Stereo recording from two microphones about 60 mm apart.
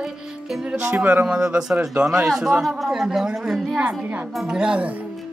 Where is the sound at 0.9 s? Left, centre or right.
Right.